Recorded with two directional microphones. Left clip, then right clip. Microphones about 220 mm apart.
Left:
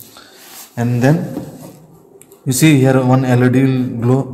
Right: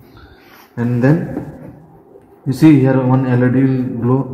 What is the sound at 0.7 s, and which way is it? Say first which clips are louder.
Speech: even; 45° left (ahead or behind).